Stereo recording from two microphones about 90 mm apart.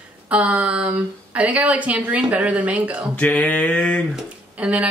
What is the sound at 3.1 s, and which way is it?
Speech, 15° left (ahead or behind).